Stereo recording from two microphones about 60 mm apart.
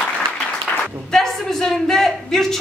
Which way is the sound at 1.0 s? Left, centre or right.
Centre.